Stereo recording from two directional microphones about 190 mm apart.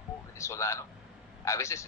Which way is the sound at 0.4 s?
15° left (ahead or behind).